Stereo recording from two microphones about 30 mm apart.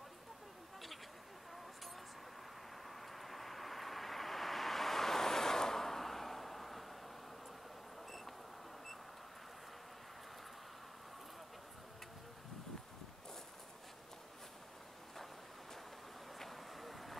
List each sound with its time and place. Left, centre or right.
2.9 s vehicle: centre
16.3 s vehicle: centre